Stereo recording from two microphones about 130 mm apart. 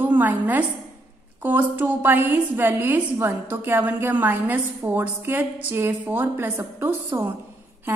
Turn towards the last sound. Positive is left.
turn(degrees=-15)  # may be behind; listen again after turning